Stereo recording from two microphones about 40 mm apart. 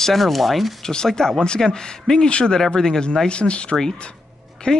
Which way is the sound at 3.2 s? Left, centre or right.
Left.